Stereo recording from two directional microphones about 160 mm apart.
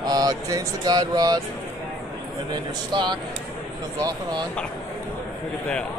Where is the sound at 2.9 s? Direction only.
25° right (ahead or behind).